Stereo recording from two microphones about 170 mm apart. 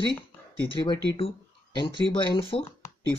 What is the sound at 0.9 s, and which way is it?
Speech, 35° left (ahead or behind).